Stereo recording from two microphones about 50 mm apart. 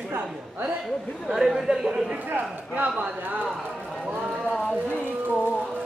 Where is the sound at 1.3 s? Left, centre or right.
Centre.